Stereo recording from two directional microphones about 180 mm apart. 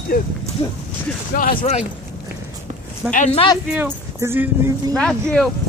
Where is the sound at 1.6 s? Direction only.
35° left (ahead or behind).